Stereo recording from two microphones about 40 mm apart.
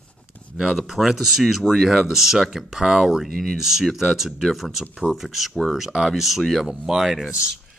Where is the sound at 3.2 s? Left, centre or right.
Centre.